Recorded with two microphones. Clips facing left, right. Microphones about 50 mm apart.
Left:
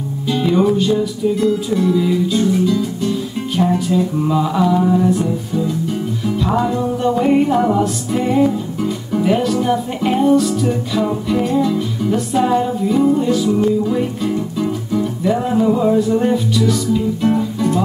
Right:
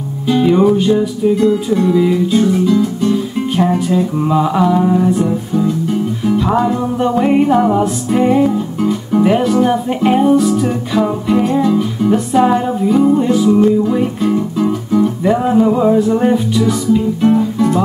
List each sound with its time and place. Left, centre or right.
0.3 s music: centre
1.4 s music: centre
2.0 s guitar: centre
3.1 s music: right
3.7 s music: centre